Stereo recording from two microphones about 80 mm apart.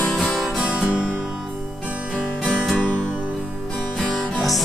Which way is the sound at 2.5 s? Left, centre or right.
Centre.